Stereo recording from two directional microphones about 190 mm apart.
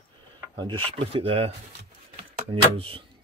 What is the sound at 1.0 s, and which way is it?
Speech, 30° right (ahead or behind).